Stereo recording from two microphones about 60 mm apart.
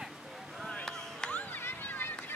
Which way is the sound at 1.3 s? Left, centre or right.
Left.